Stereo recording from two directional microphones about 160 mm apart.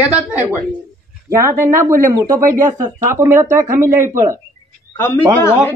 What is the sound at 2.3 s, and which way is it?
Speech, 55° right (ahead or behind).